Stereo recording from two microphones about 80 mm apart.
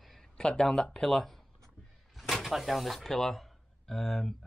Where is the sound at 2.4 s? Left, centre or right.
Centre.